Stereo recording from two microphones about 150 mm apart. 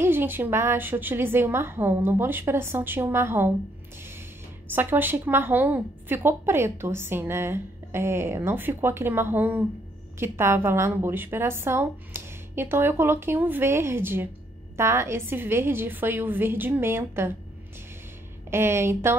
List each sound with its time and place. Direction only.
0.0 s a woman's voice: 15° right (ahead or behind)
4.7 s a woman's voice: 15° right (ahead or behind)
18.5 s a woman's voice: 15° right (ahead or behind)